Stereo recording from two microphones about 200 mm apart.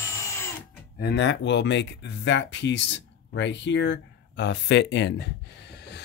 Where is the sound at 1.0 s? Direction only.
55° left (ahead or behind).